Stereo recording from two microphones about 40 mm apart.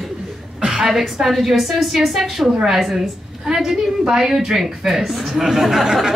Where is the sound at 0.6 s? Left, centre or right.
Right.